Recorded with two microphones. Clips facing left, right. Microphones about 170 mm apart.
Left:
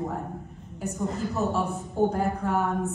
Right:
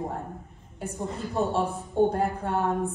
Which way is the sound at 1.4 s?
30° right (ahead or behind).